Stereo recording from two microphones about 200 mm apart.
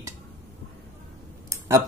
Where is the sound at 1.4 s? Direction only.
15° right (ahead or behind).